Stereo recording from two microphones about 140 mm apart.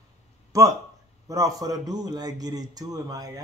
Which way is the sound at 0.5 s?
25° right (ahead or behind).